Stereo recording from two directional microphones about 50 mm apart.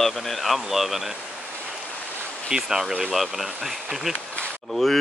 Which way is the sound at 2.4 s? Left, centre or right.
Centre.